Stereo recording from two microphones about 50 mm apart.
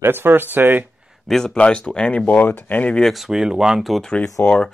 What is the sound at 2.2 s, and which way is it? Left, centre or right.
Speech, left.